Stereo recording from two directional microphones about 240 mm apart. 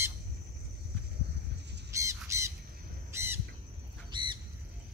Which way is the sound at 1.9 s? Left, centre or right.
Centre.